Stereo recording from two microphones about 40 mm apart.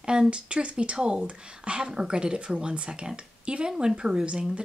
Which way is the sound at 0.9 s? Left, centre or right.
Right.